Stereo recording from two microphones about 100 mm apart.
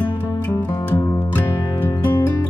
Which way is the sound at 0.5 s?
20° left (ahead or behind).